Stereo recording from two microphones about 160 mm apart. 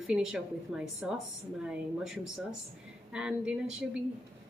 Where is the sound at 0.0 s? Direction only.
5° right (ahead or behind).